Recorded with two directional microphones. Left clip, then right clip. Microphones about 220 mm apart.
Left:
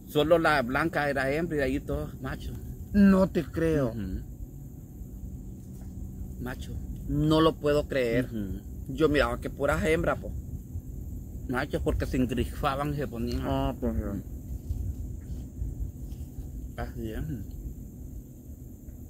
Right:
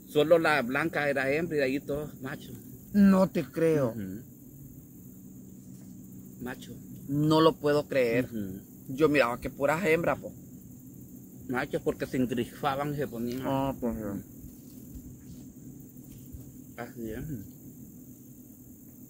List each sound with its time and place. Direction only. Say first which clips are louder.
0.1 s a man's voice: even; 15° left (ahead or behind)
2.9 s speech: left 1 dB; 30° right (ahead or behind)
6.9 s speech: even; 25° right (ahead or behind)
11.4 s a man's voice: even; 15° left (ahead or behind)
13.5 s speech: right 1 dB; 20° right (ahead or behind)
16.7 s a man's voice: left 1 dB; 15° left (ahead or behind)